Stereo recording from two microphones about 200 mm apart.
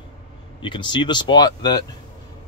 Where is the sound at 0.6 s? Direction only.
25° left (ahead or behind).